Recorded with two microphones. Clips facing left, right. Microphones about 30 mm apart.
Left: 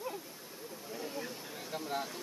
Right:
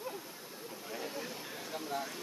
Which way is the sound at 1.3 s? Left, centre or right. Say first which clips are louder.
Right 1 dB; centre.